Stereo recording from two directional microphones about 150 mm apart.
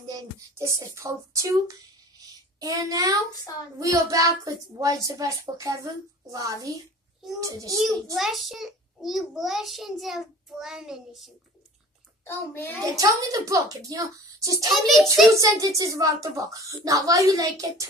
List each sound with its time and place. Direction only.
0.0 s a child's voice: 25° right (ahead or behind)
8.2 s a child's voice: centre (ahead or behind)
12.3 s a child's voice: 15° left (ahead or behind)
12.8 s a child's voice: 25° right (ahead or behind)
14.7 s a child's voice: centre (ahead or behind)
15.6 s a child's voice: 25° right (ahead or behind)